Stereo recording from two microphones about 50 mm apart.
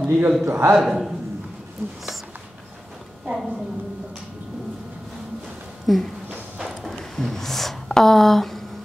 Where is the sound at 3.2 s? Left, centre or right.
Centre.